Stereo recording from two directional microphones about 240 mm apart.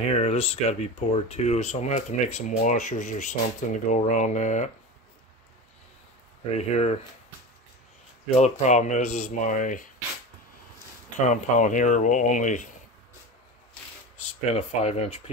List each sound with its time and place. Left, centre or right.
0.1 s speech: left
6.7 s speech: left
8.4 s speech: left
11.2 s speech: left
14.4 s speech: left